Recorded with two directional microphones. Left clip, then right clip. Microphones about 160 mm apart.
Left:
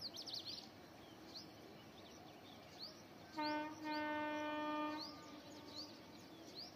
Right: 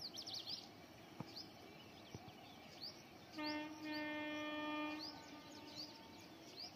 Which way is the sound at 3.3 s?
20° left (ahead or behind).